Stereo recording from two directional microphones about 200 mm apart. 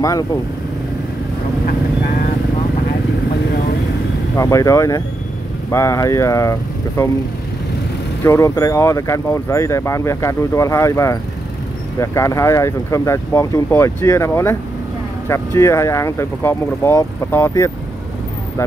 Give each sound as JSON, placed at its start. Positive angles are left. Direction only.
{"t": 0.0, "sound": "speech", "side_deg": 15}
{"t": 4.4, "sound": "speech", "side_deg": 15}
{"t": 8.2, "sound": "speech", "side_deg": 15}